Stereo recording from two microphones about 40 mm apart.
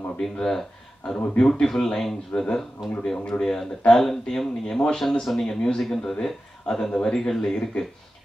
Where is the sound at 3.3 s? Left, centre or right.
Left.